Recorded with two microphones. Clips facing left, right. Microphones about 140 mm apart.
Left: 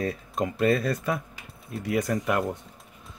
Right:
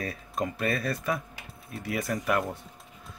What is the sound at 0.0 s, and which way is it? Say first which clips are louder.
Speech: left 4 dB; 25° left (ahead or behind).